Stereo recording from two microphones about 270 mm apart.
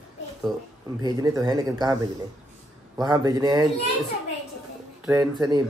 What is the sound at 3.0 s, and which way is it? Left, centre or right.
Speech, centre.